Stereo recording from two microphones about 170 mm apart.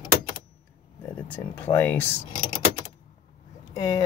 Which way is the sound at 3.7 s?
20° left (ahead or behind).